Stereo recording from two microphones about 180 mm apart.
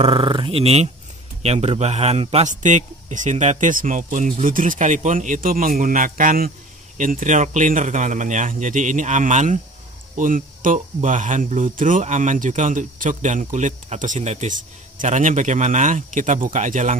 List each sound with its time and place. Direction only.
0.0 s speech: 30° right (ahead or behind); by 16.9 s 45° right (ahead or behind)